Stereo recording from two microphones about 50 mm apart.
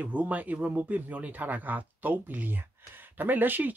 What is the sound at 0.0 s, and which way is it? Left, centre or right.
Speech, right.